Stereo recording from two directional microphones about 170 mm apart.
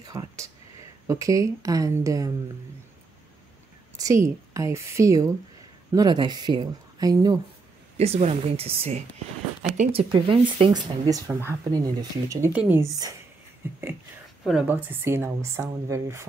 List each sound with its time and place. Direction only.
0.0 s a sound: 20° right (ahead or behind)
1.0 s speech: 20° right (ahead or behind)
3.9 s speech: 20° right (ahead or behind)
8.0 s speech: 40° right (ahead or behind)
11.1 s speech: 20° right (ahead or behind)
14.4 s speech: 5° right (ahead or behind)